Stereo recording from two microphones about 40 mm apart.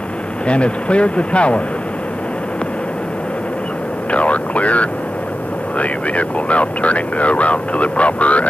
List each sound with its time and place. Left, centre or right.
0.5 s speech: left
4.1 s speech: left